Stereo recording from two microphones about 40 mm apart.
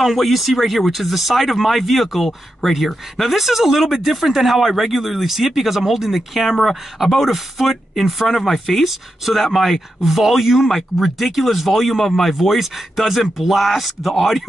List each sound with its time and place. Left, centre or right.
0.0 s speech: centre